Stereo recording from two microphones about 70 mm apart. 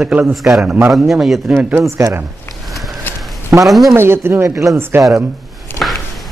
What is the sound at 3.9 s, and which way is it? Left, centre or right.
Speech, right.